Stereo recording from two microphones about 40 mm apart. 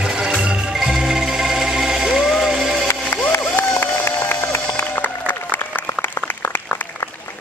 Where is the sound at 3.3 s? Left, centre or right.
Left.